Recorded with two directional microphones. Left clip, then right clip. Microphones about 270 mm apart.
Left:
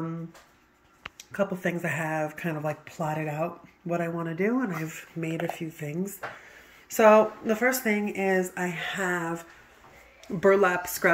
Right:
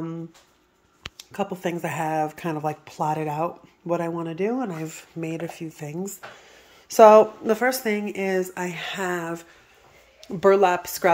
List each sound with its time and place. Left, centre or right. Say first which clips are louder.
1.1 s speech: even; centre
7.0 s speech: right 6 dB; centre